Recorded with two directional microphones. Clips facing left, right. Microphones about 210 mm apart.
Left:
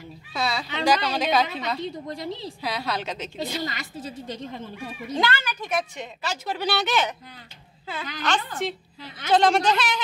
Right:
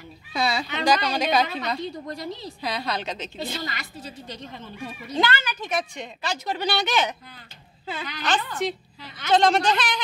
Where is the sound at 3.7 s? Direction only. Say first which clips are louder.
Left 3 dB; 45° left (ahead or behind).